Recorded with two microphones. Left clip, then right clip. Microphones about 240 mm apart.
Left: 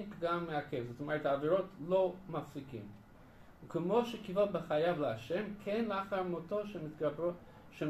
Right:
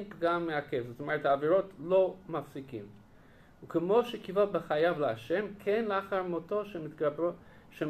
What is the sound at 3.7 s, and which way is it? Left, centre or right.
Speech, centre.